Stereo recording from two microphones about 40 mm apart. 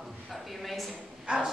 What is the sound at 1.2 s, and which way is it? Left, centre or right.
Speech, right.